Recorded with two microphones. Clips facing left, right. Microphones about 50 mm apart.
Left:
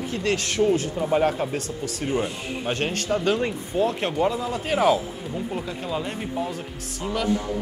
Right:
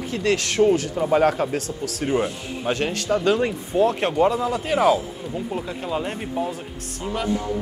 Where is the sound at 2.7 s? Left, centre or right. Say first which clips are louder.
Right 3 dB; centre.